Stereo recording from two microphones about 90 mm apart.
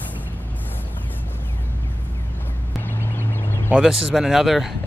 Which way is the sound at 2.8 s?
25° left (ahead or behind).